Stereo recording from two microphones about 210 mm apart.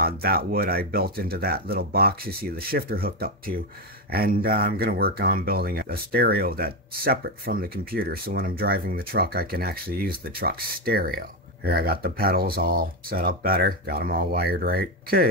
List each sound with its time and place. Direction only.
0.0 s speech: 45° right (ahead or behind)